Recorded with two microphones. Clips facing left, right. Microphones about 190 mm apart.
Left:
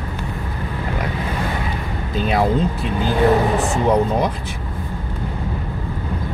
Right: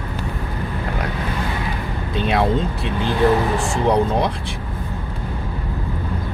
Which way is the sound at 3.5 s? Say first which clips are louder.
Left 2 dB; 20° left (ahead or behind).